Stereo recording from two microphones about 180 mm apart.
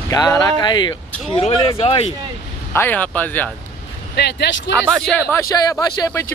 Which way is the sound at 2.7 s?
10° left (ahead or behind).